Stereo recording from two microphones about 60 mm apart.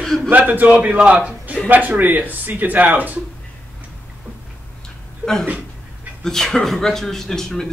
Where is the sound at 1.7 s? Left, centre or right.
Right.